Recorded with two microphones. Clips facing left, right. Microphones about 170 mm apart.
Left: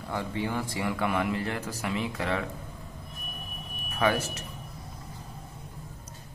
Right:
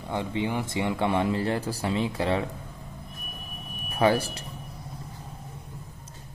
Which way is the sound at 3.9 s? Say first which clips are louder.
Right 4 dB; 35° right (ahead or behind).